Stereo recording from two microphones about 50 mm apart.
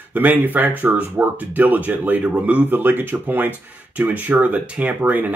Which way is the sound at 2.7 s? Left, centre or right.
Right.